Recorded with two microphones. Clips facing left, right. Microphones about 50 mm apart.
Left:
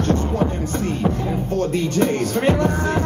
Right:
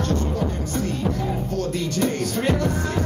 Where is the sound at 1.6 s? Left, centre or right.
Left.